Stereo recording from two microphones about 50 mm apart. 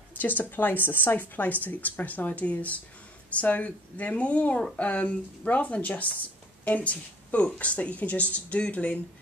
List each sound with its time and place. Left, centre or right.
0.1 s speech: left